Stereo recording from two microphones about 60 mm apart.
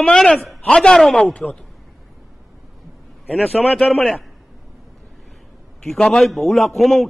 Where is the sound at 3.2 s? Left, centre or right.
Centre.